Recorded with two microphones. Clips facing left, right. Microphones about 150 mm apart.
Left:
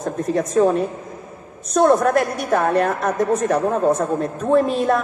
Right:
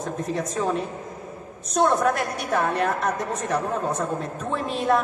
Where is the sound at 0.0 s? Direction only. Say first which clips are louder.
Left 6 dB; 45° left (ahead or behind).